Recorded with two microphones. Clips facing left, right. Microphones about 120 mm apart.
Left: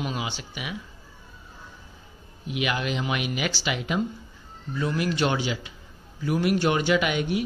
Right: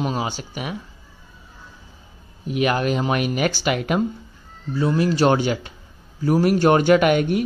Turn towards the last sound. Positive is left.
turn(degrees=-50)  # may be behind; listen again after turning